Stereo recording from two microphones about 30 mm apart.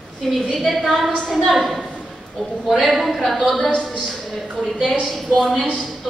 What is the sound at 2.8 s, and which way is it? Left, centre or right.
Speech, centre.